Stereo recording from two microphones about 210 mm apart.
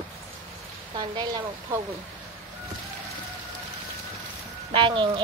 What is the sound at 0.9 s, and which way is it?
Speech, 20° right (ahead or behind).